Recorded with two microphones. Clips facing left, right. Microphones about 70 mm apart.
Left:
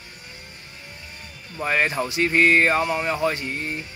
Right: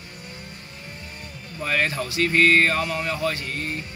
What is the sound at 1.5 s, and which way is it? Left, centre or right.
Speech, left.